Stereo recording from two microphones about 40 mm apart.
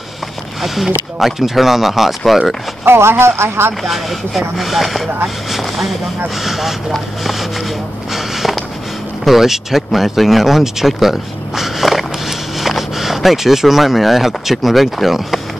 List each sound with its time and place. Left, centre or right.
0.6 s speech: centre
2.8 s speech: right
3.8 s speech: centre
8.1 s a sound: centre
9.2 s speech: centre